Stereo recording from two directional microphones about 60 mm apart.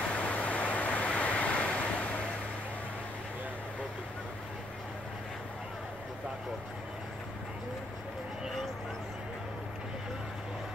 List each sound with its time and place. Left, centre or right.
0.0 s vehicle: centre